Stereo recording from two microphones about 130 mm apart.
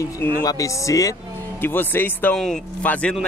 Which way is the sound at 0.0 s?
25° left (ahead or behind).